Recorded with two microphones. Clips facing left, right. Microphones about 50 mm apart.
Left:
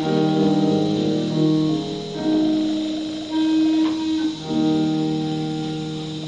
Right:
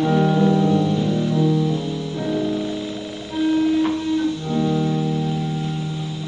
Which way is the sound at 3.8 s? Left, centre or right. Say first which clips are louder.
Even; right.